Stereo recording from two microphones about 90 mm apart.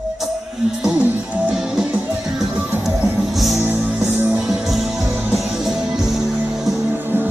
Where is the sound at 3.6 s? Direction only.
15° right (ahead or behind).